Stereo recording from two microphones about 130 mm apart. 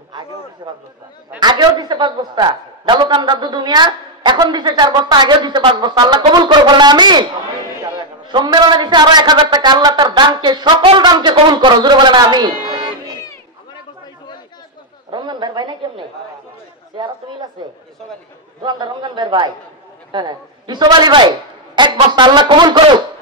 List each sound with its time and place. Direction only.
0.6 s a woman's voice: 30° right (ahead or behind)
8.3 s a woman's voice: 35° right (ahead or behind)
14.0 s chatter: 35° left (ahead or behind)
15.0 s a sound: 35° right (ahead or behind)
16.9 s chatter: 40° right (ahead or behind)
18.6 s a woman's voice: 35° right (ahead or behind)